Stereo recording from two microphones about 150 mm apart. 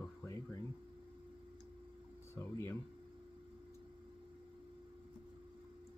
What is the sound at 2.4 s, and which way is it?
Speech, 20° left (ahead or behind).